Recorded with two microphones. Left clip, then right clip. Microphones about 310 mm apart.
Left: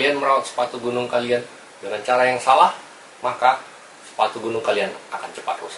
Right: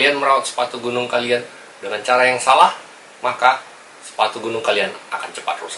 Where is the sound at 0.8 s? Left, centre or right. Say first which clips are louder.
Right 3 dB; centre.